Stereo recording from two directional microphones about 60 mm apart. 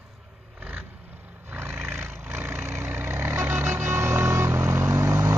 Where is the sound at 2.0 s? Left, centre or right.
Right.